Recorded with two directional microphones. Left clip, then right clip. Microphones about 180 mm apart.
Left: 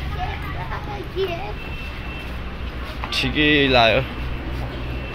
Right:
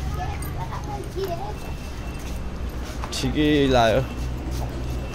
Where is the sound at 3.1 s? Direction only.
25° right (ahead or behind).